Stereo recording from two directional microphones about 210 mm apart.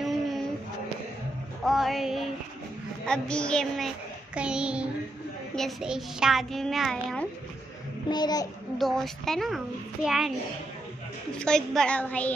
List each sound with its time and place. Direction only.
0.0 s a sound: centre (ahead or behind)
1.7 s a child's voice: centre (ahead or behind)
8.1 s a child's voice: 20° left (ahead or behind)
8.7 s a child's voice: centre (ahead or behind)
11.3 s a child's voice: 5° left (ahead or behind)